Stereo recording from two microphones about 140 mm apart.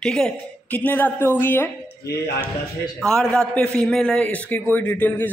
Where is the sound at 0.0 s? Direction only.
5° left (ahead or behind).